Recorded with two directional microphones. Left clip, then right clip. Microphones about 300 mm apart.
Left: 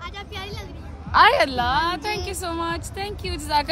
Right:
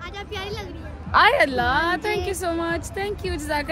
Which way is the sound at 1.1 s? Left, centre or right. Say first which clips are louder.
Left 1 dB; left.